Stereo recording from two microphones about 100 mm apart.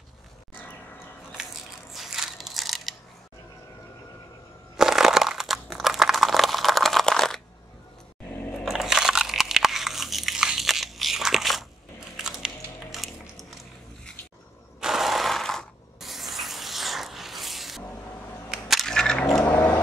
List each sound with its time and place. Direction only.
2.0 s biting: 5° right (ahead or behind)
4.7 s crunch: 5° right (ahead or behind)
8.6 s biting: 5° right (ahead or behind)
14.8 s mechanisms: 5° right (ahead or behind)
18.5 s a sound: centre (ahead or behind)
19.5 s a sound: 15° left (ahead or behind)